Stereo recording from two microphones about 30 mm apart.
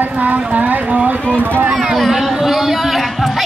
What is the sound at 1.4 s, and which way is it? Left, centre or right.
Speech, right.